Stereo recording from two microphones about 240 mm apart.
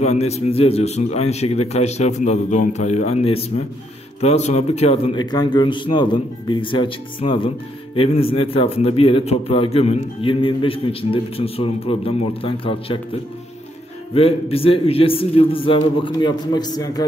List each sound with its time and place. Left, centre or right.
0.0 s speech: left
14.1 s speech: left